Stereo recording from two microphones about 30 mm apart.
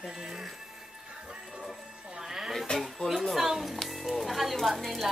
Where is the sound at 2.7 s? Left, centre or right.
Left.